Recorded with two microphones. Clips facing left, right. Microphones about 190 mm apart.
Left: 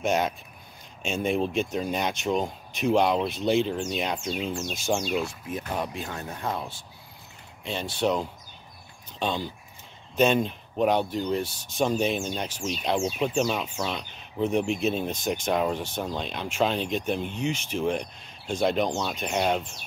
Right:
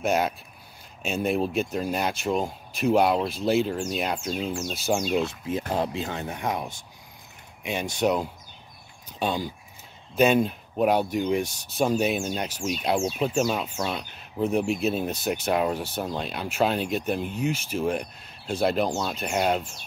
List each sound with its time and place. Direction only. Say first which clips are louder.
0.0 s speech: right 1 dB; 5° right (ahead or behind)
5.1 s speech: right 3 dB; 20° right (ahead or behind); by 19.8 s 5° right (ahead or behind)